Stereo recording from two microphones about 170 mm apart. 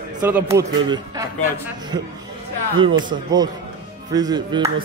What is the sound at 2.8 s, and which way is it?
Speech, 30° right (ahead or behind).